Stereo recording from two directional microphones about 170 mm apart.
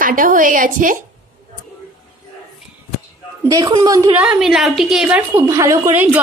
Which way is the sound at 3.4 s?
20° right (ahead or behind).